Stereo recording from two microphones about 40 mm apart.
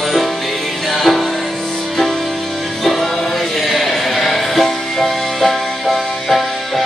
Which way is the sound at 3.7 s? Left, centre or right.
Centre.